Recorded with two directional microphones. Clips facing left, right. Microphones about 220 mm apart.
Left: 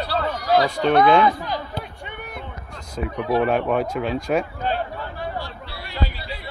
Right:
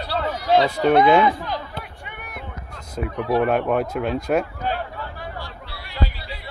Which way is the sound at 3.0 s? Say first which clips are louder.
Even; centre (ahead or behind).